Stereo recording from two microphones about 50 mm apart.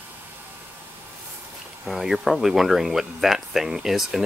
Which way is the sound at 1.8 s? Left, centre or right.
Centre.